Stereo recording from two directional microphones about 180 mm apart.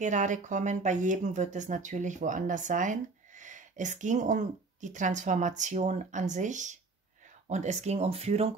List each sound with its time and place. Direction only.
0.0 s speech: 45° right (ahead or behind)